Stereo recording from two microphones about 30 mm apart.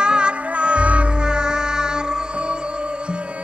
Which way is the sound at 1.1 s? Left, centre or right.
Right.